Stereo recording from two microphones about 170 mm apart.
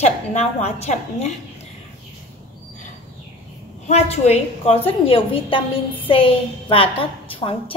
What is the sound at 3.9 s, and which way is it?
A woman's voice, 40° left (ahead or behind).